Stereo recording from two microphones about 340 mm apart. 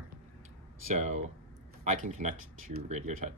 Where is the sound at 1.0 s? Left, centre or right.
Right.